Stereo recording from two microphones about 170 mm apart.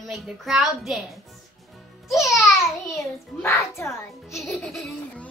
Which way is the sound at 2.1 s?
20° left (ahead or behind).